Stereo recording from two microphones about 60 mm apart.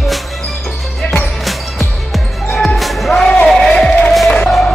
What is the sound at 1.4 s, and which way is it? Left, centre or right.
Basketball bounce, centre.